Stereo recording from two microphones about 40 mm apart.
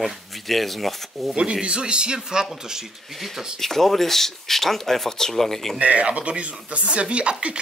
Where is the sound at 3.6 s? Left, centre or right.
Centre.